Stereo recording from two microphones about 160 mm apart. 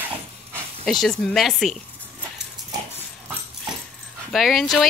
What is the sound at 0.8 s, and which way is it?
Speech, centre (ahead or behind).